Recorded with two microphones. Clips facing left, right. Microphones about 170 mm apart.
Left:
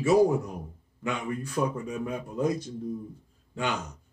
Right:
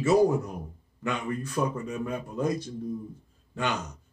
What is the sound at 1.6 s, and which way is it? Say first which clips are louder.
A man's voice: left 1 dB; 15° left (ahead or behind).